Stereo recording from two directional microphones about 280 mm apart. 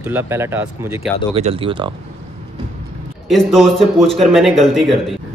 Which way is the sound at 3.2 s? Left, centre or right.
Centre.